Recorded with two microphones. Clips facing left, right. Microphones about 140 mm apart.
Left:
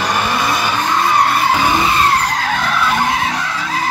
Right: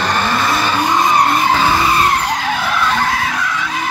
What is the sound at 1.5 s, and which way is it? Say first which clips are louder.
Vehicle: even; 15° left (ahead or behind).